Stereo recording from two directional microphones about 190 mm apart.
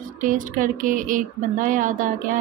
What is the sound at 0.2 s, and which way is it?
Speech, 45° right (ahead or behind).